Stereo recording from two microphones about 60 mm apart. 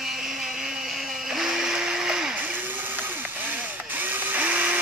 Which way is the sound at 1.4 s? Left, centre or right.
Centre.